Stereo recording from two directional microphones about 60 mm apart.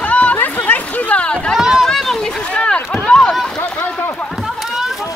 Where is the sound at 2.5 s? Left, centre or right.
Centre.